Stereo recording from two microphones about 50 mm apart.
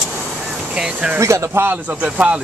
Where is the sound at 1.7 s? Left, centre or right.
Right.